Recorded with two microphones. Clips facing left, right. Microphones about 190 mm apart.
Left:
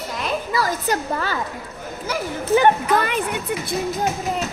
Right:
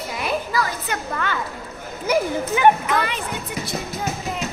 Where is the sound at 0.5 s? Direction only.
35° left (ahead or behind).